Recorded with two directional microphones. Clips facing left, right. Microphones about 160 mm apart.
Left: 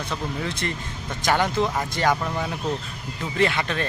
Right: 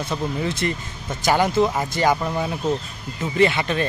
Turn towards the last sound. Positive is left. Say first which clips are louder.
# right 4 dB
turn(degrees=-5)  # may be behind; listen again after turning